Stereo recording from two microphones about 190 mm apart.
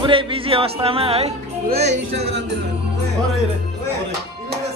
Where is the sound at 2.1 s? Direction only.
65° right (ahead or behind).